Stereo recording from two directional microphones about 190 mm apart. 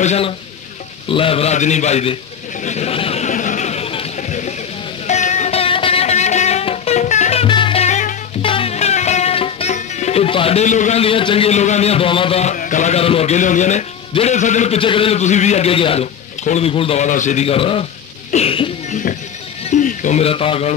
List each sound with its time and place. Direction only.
0.0 s a man's voice: 35° left (ahead or behind)
2.6 s a sound: 35° left (ahead or behind)
5.0 s music: 35° left (ahead or behind)
18.3 s cough: 30° left (ahead or behind)
19.6 s speech: 40° left (ahead or behind)